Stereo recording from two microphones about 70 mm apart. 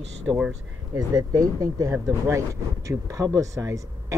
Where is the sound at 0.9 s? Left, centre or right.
Right.